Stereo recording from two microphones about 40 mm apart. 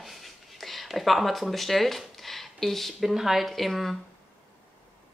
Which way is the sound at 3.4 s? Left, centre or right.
Centre.